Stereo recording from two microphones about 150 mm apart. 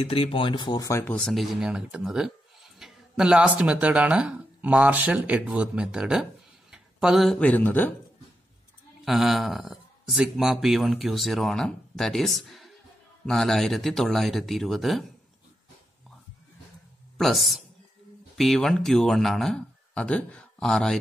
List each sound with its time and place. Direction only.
0.1 s speech: 35° left (ahead or behind); by 1.1 s 20° left (ahead or behind)
1.1 s speech: centre (ahead or behind)
9.0 s speech: centre (ahead or behind)
17.2 s speech: centre (ahead or behind)